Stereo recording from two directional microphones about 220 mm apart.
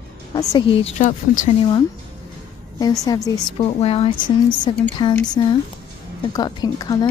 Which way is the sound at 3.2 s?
20° left (ahead or behind).